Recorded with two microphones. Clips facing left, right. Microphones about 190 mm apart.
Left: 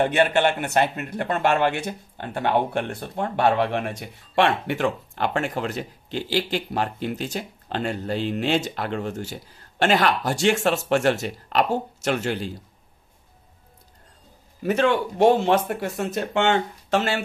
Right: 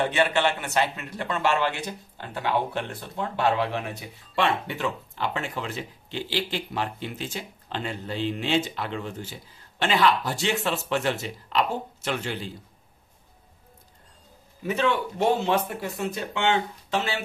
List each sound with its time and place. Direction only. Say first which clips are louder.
0.0 s a man's voice: left 4 dB; 50° left (ahead or behind); by 4.8 s 65° left (ahead or behind)
4.8 s a man's voice: left 4 dB; 50° left (ahead or behind)
14.6 s a man's voice: left 4 dB; 50° left (ahead or behind)